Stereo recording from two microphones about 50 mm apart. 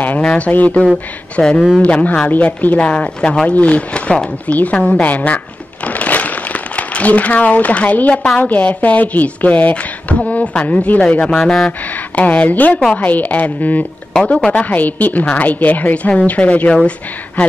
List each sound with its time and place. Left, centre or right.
0.2 s a sound: centre
0.5 s speech: left
1.4 s speech: centre
1.8 s a woman's voice: left
5.9 s a sound: left
8.4 s speech: left
11.3 s speech: centre
11.9 s a woman's voice: left
14.1 s speech: centre
14.5 s a woman's voice: left